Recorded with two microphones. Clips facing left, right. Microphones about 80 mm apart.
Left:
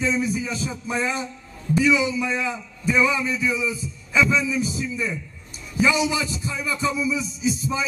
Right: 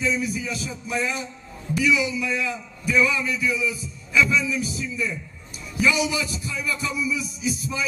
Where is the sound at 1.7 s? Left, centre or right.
Left.